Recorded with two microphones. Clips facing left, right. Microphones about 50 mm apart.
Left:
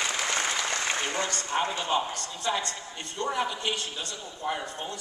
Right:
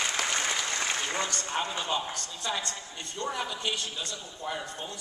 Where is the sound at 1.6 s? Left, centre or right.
Left.